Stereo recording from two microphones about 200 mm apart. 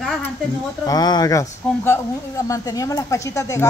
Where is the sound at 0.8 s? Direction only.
20° left (ahead or behind).